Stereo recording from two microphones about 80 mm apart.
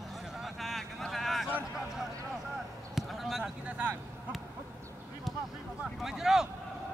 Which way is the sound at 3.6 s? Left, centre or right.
Centre.